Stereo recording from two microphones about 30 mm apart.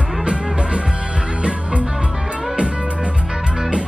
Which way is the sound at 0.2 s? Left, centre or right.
Right.